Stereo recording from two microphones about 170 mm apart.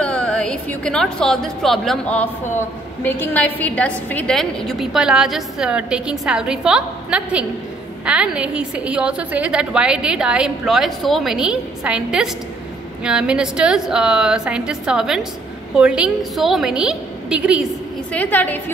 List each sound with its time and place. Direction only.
0.0 s a woman's voice: 5° left (ahead or behind)
18.1 s a woman's voice: 10° left (ahead or behind)